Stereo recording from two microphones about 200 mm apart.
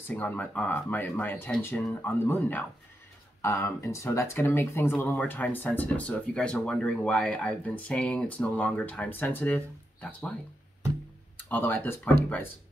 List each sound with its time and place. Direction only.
0.1 s speech: 10° left (ahead or behind)
11.4 s speech: 10° left (ahead or behind)